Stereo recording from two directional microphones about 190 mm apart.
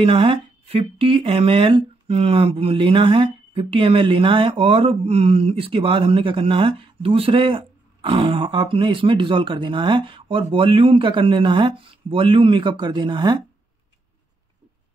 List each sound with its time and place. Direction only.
0.0 s speech: 25° right (ahead or behind)